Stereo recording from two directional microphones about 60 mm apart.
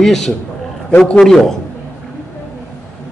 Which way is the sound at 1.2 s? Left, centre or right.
Centre.